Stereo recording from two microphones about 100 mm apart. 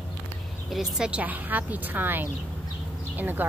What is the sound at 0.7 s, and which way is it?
Speech, 5° right (ahead or behind).